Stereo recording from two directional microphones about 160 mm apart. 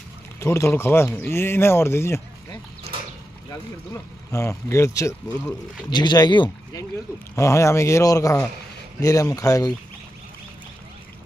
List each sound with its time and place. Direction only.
0.4 s speech: 15° left (ahead or behind)
3.9 s speech: 20° left (ahead or behind)